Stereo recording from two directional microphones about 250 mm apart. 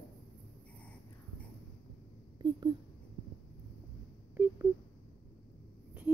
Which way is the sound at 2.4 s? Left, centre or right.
Centre.